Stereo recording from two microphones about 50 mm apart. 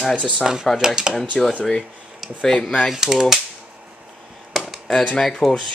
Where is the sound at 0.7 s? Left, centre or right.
Centre.